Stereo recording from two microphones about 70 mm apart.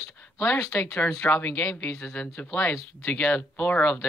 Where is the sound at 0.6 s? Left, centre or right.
Centre.